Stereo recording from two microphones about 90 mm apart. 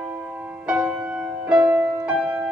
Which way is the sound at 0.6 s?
10° right (ahead or behind).